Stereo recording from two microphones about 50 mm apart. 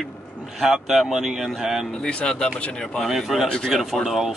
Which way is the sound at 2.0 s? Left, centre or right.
Centre.